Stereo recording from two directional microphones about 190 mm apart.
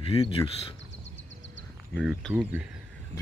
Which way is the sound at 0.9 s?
70° left (ahead or behind).